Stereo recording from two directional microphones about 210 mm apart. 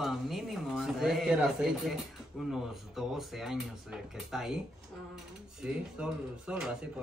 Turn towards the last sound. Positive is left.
turn(degrees=-5)  # may be behind; listen again after turning